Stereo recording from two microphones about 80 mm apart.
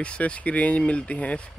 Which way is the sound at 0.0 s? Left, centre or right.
Centre.